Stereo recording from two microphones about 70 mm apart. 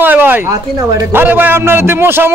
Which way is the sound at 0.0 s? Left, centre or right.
Right.